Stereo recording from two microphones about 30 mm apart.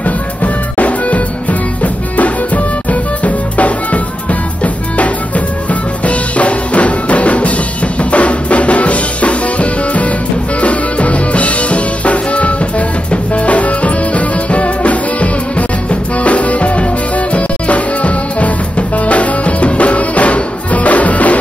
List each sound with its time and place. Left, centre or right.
0.0 s music: left